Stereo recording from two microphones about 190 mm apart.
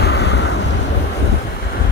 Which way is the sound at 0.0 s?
60° left (ahead or behind).